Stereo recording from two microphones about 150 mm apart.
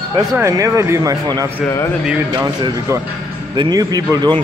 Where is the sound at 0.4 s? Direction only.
20° right (ahead or behind).